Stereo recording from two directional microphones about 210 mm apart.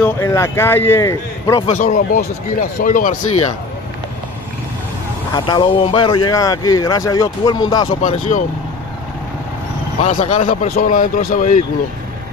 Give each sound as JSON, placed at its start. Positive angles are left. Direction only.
{"t": 0.0, "sound": "speech", "side_deg": 10}
{"t": 1.8, "sound": "speech", "side_deg": 40}
{"t": 5.3, "sound": "speech", "side_deg": 20}
{"t": 8.0, "sound": "speech", "side_deg": 35}
{"t": 10.0, "sound": "speech", "side_deg": 35}